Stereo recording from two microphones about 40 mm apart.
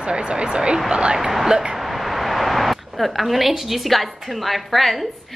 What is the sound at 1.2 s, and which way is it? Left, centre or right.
Speech, centre.